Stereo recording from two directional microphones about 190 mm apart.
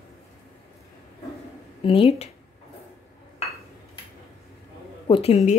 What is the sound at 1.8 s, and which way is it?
Speech, 30° left (ahead or behind).